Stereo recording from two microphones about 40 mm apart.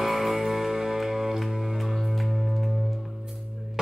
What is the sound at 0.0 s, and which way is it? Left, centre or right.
Music, centre.